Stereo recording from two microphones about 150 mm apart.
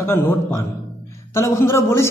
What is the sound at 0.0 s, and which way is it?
A woman's voice, 15° left (ahead or behind).